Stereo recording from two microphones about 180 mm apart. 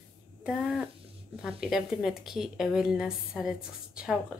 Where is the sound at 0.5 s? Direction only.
5° right (ahead or behind).